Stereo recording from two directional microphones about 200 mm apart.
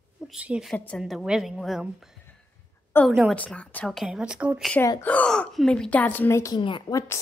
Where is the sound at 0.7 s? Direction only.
5° left (ahead or behind).